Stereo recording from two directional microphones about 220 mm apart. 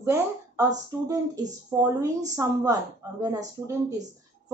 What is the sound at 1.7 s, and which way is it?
A woman's voice, 10° right (ahead or behind).